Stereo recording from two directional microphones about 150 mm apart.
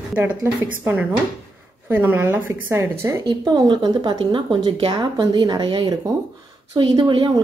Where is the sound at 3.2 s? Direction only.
30° right (ahead or behind).